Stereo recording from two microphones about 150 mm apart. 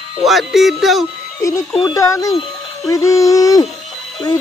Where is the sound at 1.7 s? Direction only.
25° left (ahead or behind).